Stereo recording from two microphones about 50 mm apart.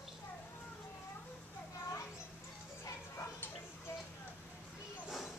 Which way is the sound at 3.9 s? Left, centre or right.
Left.